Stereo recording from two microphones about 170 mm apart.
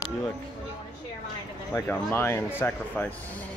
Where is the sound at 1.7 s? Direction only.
10° left (ahead or behind).